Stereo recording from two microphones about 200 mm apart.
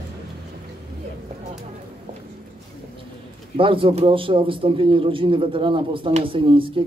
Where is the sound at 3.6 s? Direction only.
25° right (ahead or behind).